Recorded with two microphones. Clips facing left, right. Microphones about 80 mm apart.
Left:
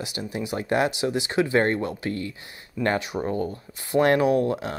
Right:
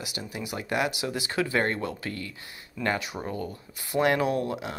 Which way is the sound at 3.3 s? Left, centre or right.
Left.